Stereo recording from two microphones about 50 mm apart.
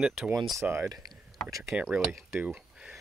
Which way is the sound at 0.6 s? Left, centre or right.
Right.